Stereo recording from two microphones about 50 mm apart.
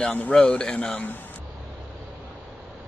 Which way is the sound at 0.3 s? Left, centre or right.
Centre.